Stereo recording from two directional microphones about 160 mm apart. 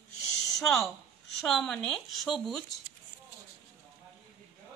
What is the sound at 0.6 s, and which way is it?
Speech, centre (ahead or behind).